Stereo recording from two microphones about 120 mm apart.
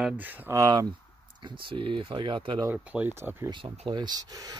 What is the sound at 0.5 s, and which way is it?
Speech, 30° right (ahead or behind).